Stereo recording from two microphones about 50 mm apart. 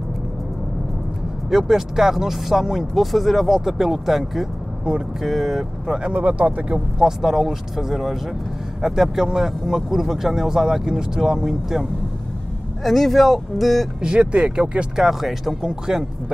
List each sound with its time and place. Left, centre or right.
1.5 s speech: centre
6.0 s speech: right
7.0 s speech: centre
12.8 s speech: centre
14.0 s speech: right
15.0 s speech: centre